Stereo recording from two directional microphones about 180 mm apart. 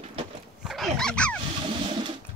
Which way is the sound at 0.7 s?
Centre (ahead or behind).